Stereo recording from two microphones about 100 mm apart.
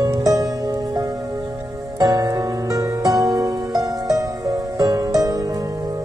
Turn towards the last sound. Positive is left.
turn(degrees=-35)  # may be behind; listen again after turning